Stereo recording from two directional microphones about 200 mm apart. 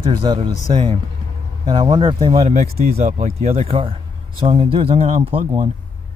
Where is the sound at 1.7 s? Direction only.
20° right (ahead or behind).